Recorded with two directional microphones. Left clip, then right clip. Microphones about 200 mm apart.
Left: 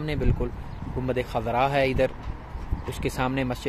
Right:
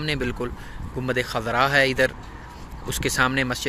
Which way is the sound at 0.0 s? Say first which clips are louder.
Right 3 dB; 5° right (ahead or behind).